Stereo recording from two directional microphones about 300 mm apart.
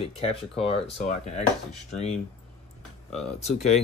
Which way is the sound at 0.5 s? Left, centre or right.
Centre.